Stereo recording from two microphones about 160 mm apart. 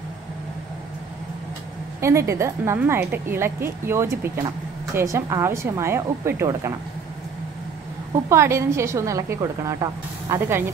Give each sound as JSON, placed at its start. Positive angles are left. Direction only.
{"t": 2.0, "sound": "a woman's voice", "side_deg": -20}
{"t": 8.3, "sound": "a woman's voice", "side_deg": -15}